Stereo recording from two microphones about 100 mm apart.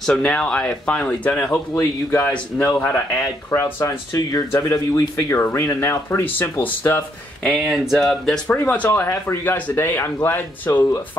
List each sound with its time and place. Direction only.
0.1 s speech: 10° left (ahead or behind)
1.5 s speech: 25° left (ahead or behind)
4.3 s speech: 35° left (ahead or behind)
7.6 s speech: 5° right (ahead or behind)
8.5 s speech: 15° left (ahead or behind)